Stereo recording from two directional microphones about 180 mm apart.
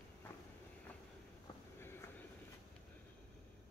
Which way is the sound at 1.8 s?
15° left (ahead or behind).